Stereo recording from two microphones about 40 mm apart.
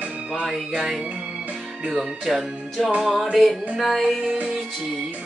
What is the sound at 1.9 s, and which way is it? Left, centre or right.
Speech, centre.